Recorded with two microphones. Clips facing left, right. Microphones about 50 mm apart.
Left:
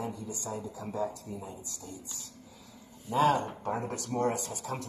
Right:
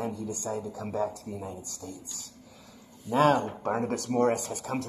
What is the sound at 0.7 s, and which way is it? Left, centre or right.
Speech, right.